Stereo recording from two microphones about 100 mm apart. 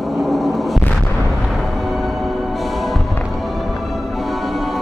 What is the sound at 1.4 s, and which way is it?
Music, centre (ahead or behind).